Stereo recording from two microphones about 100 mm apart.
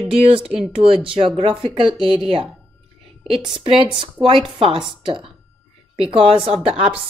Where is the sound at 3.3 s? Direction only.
55° right (ahead or behind).